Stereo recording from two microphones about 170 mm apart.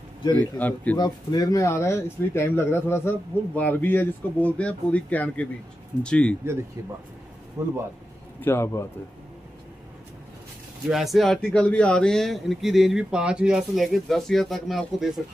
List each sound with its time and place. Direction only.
0.6 s speech: 10° left (ahead or behind)
0.9 s speech: 25° left (ahead or behind); by 6.3 s 5° left (ahead or behind)
7.6 s speech: 15° right (ahead or behind)
8.4 s speech: 15° left (ahead or behind)
10.9 s speech: centre (ahead or behind)